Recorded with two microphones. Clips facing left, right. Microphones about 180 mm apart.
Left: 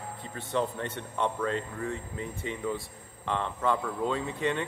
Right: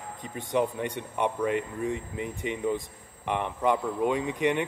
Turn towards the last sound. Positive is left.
turn(degrees=-15)  # may be behind; listen again after turning